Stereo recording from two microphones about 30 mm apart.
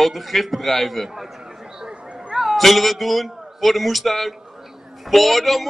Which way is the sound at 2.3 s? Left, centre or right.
Centre.